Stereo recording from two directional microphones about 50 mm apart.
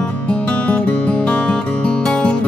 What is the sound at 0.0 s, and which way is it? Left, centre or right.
Music, left.